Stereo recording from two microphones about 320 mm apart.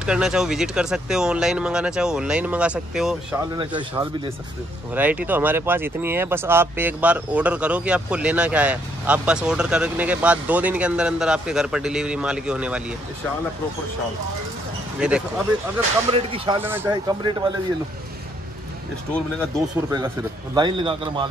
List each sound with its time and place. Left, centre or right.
0.0 s speech: centre
3.5 s speech: centre
15.0 s speech: centre
16.1 s speech: centre
19.1 s speech: centre
20.5 s speech: centre